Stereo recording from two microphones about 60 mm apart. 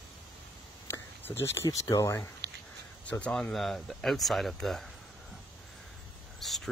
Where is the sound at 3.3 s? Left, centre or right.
Centre.